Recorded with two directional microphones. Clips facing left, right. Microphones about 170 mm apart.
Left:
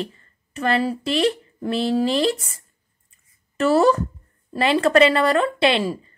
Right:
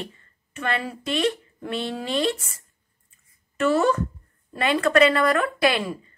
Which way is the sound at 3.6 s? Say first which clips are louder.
Left 4 dB; 35° left (ahead or behind).